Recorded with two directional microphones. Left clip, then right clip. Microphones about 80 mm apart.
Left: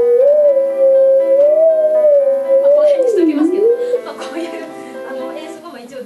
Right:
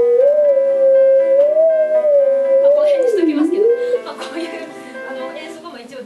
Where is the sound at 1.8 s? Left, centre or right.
Right.